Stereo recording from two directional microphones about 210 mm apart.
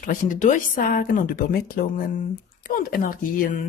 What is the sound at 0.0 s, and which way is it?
A woman's voice, 40° left (ahead or behind).